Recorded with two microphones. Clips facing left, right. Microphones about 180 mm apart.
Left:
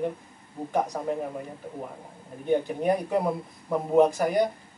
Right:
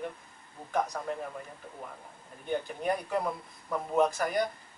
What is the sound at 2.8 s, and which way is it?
Speech, 10° left (ahead or behind).